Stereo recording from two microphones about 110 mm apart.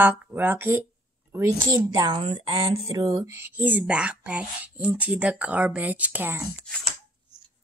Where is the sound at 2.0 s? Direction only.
50° right (ahead or behind).